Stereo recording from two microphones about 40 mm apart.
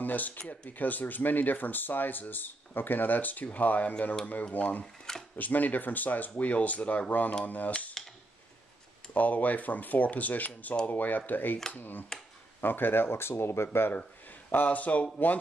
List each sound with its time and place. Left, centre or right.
0.0 s speech: left
5.1 s camera: centre
5.4 s speech: left
6.3 s speech: left
8.0 s a sound: centre
9.1 s speech: left
14.5 s speech: left